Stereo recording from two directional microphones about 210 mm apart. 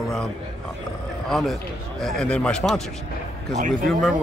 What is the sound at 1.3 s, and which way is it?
Speech, centre (ahead or behind).